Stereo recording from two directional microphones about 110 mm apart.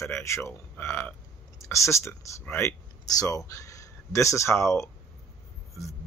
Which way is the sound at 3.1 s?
35° left (ahead or behind).